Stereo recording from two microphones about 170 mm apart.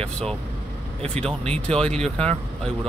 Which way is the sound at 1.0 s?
5° left (ahead or behind).